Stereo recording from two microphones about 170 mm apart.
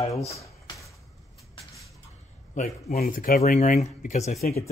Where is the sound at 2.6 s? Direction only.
45° left (ahead or behind).